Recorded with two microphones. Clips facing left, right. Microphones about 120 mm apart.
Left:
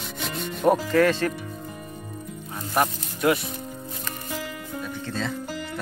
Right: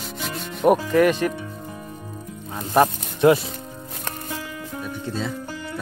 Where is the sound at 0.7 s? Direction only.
15° right (ahead or behind).